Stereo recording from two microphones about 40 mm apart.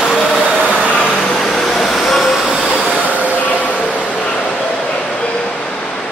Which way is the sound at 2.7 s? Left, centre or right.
Left.